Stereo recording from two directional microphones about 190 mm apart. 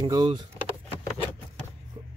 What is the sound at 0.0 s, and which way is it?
Speech, 25° right (ahead or behind).